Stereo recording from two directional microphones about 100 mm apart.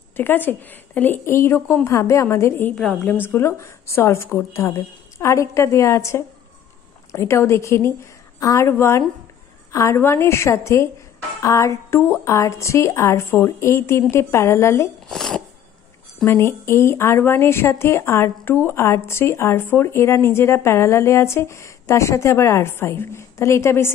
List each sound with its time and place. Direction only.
0.2 s speech: 20° left (ahead or behind)
2.7 s a woman's voice: 5° left (ahead or behind)
3.2 s speech: 25° left (ahead or behind)
15.0 s a sound: 5° left (ahead or behind)
16.3 s speech: 25° left (ahead or behind)